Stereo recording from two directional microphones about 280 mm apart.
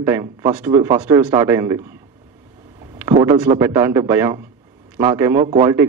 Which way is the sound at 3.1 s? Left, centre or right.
Centre.